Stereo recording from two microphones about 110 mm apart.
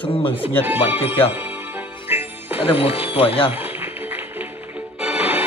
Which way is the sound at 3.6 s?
20° right (ahead or behind).